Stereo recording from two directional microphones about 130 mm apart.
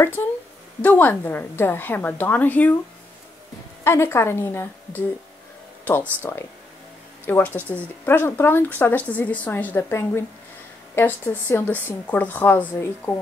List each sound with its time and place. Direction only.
0.8 s speech: 15° left (ahead or behind)
3.8 s a woman's voice: 20° left (ahead or behind)